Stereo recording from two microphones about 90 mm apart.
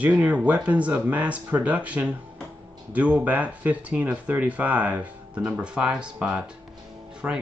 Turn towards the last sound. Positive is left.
turn(degrees=-15)  # may be behind; listen again after turning